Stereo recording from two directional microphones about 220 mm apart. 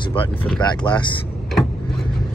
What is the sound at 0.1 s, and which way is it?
Speech, 25° left (ahead or behind).